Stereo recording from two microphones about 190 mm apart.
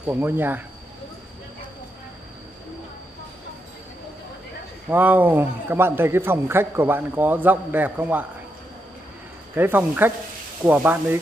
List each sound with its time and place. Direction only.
0.0 s a man's voice: 10° right (ahead or behind)
4.8 s a man's voice: 10° right (ahead or behind)
9.6 s a man's voice: 10° right (ahead or behind)